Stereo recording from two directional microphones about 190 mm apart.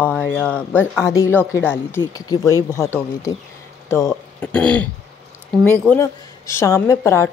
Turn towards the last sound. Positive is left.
turn(degrees=15)  # may be behind; listen again after turning